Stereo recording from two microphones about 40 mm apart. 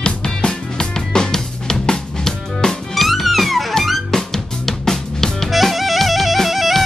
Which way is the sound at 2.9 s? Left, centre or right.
Centre.